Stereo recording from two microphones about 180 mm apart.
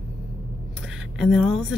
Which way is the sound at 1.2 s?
Centre (ahead or behind).